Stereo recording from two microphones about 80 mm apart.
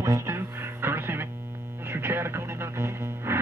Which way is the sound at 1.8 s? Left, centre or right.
Right.